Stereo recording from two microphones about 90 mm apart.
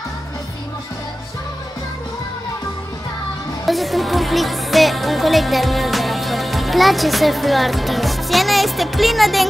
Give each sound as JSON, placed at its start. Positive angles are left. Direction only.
{"t": 3.6, "sound": "music", "side_deg": 0}